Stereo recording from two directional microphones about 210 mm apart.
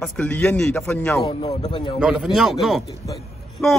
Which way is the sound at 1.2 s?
20° left (ahead or behind).